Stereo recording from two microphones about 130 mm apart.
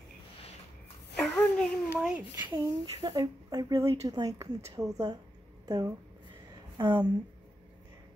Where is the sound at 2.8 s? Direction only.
40° right (ahead or behind).